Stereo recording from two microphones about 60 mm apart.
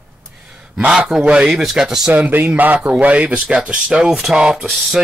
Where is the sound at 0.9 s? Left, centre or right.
Centre.